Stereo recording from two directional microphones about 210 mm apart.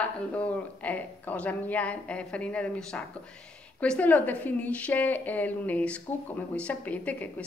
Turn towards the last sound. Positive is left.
turn(degrees=5)  # may be behind; listen again after turning